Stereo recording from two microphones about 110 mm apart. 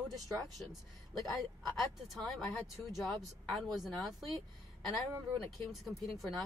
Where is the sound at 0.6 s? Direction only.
Centre (ahead or behind).